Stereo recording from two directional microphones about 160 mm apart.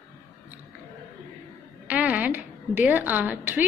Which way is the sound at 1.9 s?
10° right (ahead or behind).